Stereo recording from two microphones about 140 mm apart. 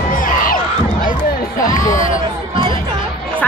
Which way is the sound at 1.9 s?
65° left (ahead or behind).